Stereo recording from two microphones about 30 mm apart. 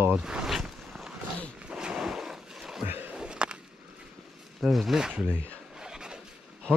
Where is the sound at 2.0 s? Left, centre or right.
Centre.